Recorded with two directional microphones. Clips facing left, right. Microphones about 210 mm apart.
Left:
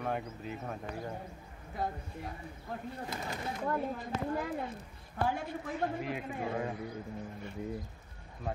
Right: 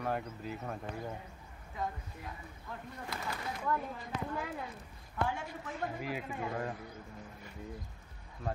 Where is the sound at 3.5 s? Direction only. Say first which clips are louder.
Left 2 dB; 35° left (ahead or behind).